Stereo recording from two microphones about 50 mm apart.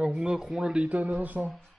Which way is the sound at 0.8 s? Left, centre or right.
Right.